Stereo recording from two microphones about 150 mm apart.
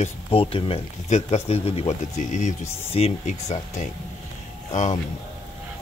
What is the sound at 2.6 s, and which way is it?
Speech, 15° left (ahead or behind).